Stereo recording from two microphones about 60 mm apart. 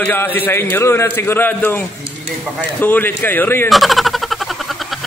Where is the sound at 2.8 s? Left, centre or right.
Left.